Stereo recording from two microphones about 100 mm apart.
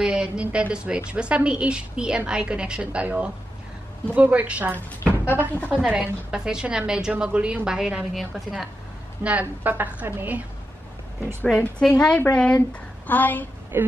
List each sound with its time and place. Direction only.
0.0 s a woman's voice: 10° right (ahead or behind)
5.0 s a sound: 20° right (ahead or behind)
5.7 s a woman's voice: 10° right (ahead or behind)
9.2 s a woman's voice: 15° right (ahead or behind)
11.8 s a woman's voice: 10° left (ahead or behind)
13.7 s speech: 20° right (ahead or behind)